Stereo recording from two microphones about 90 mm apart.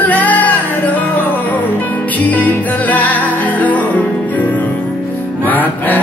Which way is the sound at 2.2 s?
20° left (ahead or behind).